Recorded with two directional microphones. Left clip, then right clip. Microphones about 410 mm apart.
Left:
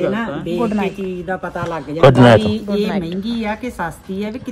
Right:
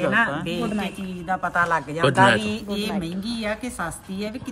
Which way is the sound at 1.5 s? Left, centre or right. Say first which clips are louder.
Right 3 dB; right.